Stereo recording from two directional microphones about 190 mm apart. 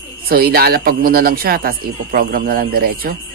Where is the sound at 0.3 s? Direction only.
50° right (ahead or behind).